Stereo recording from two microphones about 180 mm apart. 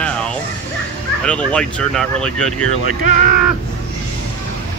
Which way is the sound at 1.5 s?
5° left (ahead or behind).